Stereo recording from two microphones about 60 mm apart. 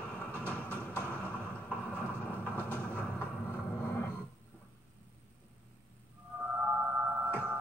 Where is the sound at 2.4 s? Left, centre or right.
Left.